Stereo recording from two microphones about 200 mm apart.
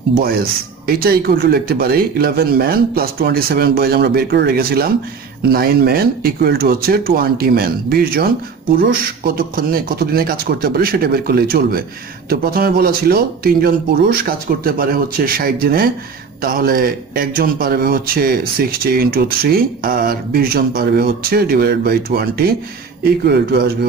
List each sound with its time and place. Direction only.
0.1 s speech: 50° right (ahead or behind)